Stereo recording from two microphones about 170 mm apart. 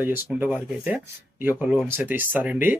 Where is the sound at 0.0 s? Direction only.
10° right (ahead or behind).